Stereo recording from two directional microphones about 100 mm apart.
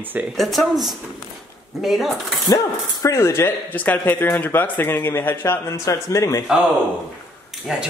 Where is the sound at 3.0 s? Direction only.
30° left (ahead or behind).